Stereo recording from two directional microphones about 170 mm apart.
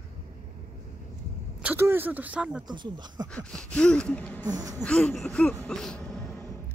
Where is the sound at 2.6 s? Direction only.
25° right (ahead or behind).